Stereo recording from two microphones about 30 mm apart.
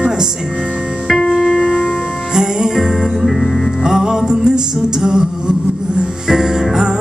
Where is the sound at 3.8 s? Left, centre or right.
Centre.